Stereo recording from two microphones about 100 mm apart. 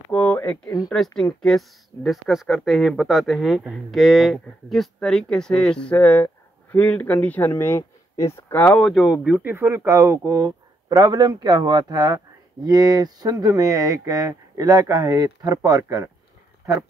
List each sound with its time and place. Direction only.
0.1 s a sound: 15° left (ahead or behind)
0.8 s speech: centre (ahead or behind); by 8.7 s 20° left (ahead or behind)
8.7 s speech: 5° left (ahead or behind)
9.4 s speech: 25° right (ahead or behind)